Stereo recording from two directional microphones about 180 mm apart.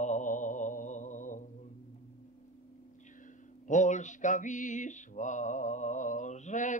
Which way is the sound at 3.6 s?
45° left (ahead or behind).